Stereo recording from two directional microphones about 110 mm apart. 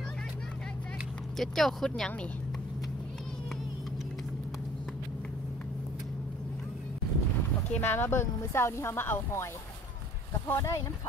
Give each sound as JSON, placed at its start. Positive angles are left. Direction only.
{"t": 1.4, "sound": "speech", "side_deg": 5}
{"t": 7.7, "sound": "speech", "side_deg": 20}
{"t": 10.5, "sound": "speech", "side_deg": 25}